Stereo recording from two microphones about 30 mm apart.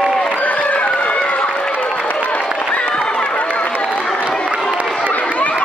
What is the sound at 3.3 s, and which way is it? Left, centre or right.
Run, left.